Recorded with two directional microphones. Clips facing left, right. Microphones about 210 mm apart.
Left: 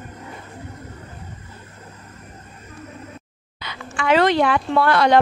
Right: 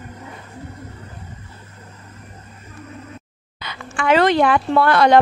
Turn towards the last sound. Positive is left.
turn(degrees=-50)  # may be behind; listen again after turning